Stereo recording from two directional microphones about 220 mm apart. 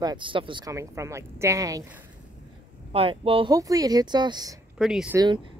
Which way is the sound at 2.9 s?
25° right (ahead or behind).